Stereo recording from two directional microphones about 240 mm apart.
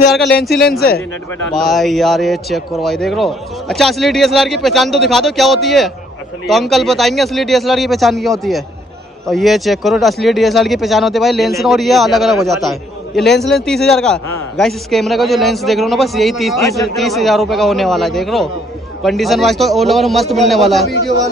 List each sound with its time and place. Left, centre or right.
0.6 s speech: left
1.5 s speech: centre